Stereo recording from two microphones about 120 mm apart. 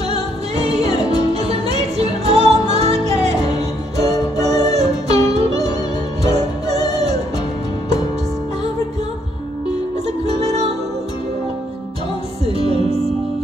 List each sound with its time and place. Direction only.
0.1 s music: 60° right (ahead or behind)
4.4 s music: 65° right (ahead or behind)
10.2 s music: 65° right (ahead or behind)
12.4 s music: 55° right (ahead or behind)